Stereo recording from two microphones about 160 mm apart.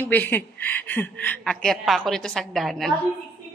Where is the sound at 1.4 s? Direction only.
Centre (ahead or behind).